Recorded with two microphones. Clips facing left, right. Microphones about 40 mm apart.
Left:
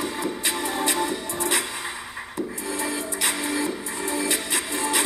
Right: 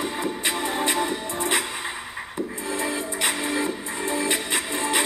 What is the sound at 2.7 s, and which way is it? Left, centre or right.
Music, right.